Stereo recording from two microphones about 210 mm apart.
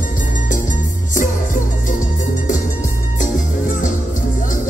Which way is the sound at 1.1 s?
40° left (ahead or behind).